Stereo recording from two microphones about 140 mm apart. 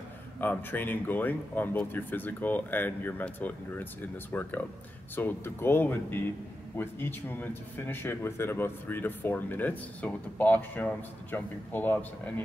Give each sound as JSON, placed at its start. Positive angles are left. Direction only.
{"t": 0.4, "sound": "speech", "side_deg": 15}